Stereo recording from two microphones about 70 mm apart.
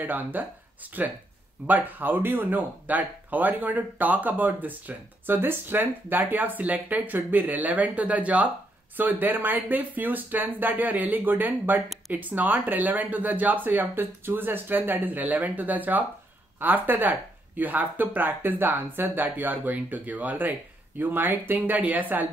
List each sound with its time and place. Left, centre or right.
0.0 s speech: right